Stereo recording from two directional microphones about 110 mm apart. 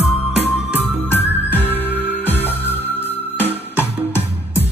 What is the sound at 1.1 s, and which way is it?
Music, 20° left (ahead or behind).